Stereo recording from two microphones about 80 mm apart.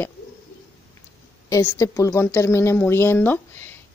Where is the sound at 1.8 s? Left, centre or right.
Left.